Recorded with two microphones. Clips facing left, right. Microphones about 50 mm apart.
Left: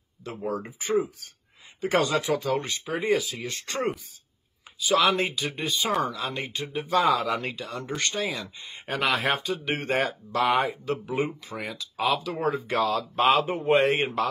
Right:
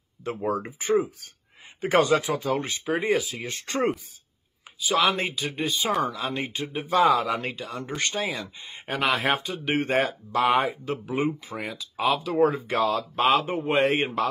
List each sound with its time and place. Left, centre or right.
0.2 s speech: right
2.2 s speech: centre
2.6 s speech: right
4.7 s speech: centre
6.7 s speech: centre
7.3 s speech: centre